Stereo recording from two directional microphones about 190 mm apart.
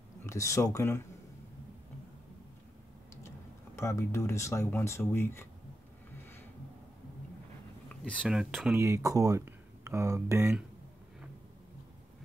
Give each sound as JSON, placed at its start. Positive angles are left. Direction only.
{"t": 0.2, "sound": "speech", "side_deg": 15}
{"t": 3.3, "sound": "speech", "side_deg": 15}
{"t": 8.0, "sound": "speech", "side_deg": 5}
{"t": 8.7, "sound": "speech", "side_deg": -15}